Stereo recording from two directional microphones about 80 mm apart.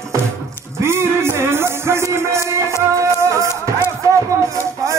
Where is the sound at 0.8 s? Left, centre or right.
Right.